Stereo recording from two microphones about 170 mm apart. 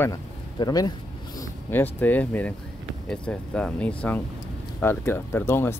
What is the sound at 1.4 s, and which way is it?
Speech, 10° left (ahead or behind).